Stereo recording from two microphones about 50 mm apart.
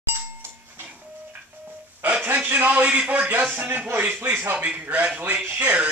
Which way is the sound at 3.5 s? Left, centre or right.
Right.